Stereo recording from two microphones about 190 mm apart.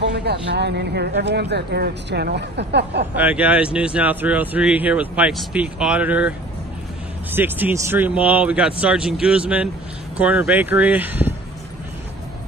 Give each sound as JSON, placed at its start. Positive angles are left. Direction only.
{"t": 0.0, "sound": "speech", "side_deg": -60}
{"t": 3.2, "sound": "speech", "side_deg": -10}